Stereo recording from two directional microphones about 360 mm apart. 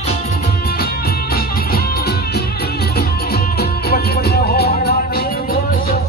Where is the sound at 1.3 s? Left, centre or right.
Left.